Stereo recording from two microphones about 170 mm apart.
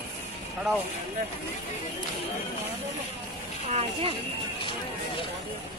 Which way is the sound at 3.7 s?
35° right (ahead or behind).